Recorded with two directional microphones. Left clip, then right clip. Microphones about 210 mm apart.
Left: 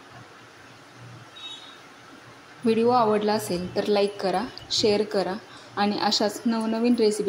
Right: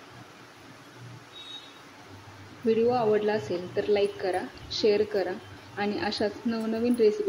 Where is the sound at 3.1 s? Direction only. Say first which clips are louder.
Left 2 dB; 25° left (ahead or behind).